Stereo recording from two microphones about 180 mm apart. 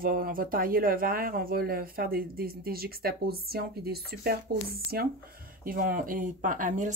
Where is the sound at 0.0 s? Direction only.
55° right (ahead or behind).